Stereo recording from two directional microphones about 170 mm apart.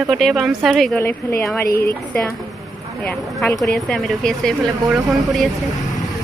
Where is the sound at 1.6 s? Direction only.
65° left (ahead or behind).